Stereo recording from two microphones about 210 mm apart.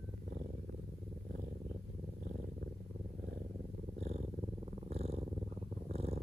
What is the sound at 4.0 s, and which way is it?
Purr, 30° right (ahead or behind).